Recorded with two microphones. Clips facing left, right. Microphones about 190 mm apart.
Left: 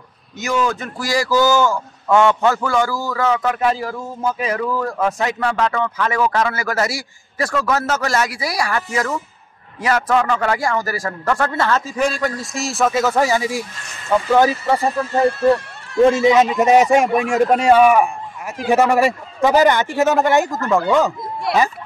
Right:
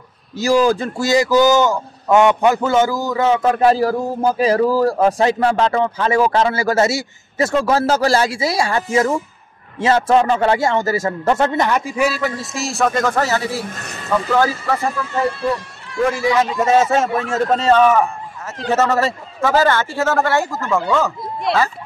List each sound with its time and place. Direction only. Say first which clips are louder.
0.4 s a man's voice: right 6 dB; 30° right (ahead or behind); by 14.8 s 20° left (ahead or behind)
14.8 s speech: left 3 dB; 35° left (ahead or behind)
16.0 s a man's voice: left 5 dB; 25° left (ahead or behind)
21.5 s speech: even; 25° right (ahead or behind)